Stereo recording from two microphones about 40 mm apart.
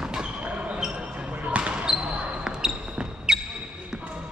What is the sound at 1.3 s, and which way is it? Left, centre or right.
Basketball bounce, right.